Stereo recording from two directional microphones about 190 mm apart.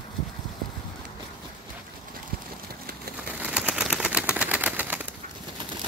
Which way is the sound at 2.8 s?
55° right (ahead or behind).